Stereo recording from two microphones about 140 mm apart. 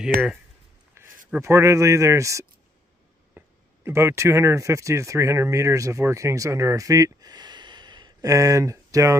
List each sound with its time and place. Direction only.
0.1 s speech: 90° right
1.0 s a sound: 20° right (ahead or behind)
1.4 s speech: 20° right (ahead or behind)